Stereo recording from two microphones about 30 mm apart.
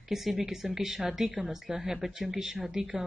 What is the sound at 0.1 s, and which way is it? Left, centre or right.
A woman's voice, centre.